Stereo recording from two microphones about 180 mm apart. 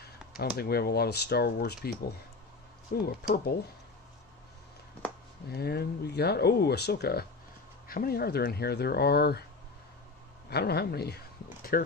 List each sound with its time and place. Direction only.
0.4 s speech: 60° left (ahead or behind)
5.5 s speech: 60° left (ahead or behind)
10.5 s speech: 60° left (ahead or behind)